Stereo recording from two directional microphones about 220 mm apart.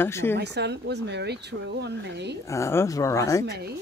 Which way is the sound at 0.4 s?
50° right (ahead or behind).